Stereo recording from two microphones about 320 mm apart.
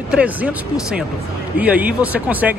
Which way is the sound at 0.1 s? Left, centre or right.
Centre.